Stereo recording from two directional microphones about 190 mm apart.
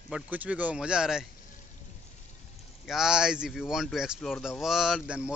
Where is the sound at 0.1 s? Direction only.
5° right (ahead or behind).